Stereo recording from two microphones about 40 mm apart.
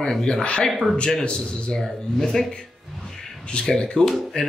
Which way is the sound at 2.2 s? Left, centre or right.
Centre.